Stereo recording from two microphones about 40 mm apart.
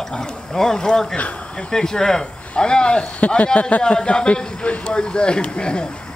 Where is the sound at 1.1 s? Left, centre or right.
Left.